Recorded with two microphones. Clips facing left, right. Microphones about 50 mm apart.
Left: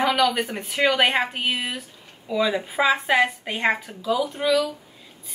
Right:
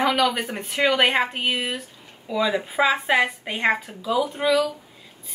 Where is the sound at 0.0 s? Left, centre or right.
Centre.